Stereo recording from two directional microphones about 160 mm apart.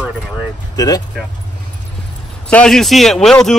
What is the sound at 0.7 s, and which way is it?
Speech, 20° left (ahead or behind).